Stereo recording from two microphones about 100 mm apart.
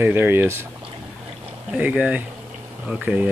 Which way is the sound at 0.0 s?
20° right (ahead or behind).